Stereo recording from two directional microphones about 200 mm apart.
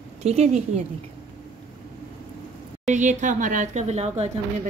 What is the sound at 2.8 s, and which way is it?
Speech, 40° right (ahead or behind).